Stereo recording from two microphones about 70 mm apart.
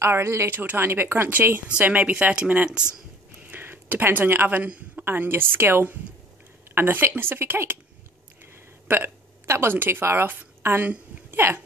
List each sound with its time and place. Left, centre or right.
0.0 s a woman's voice: right
0.5 s speech: right
3.4 s a sound: right
5.0 s a woman's voice: right
8.8 s a woman's voice: right